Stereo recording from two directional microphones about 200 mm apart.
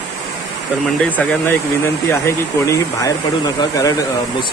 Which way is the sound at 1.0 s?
5° left (ahead or behind).